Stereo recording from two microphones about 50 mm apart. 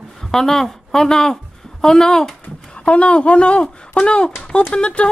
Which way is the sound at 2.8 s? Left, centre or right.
Left.